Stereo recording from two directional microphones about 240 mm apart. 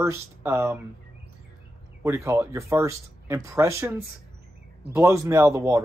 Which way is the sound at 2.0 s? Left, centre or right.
Centre.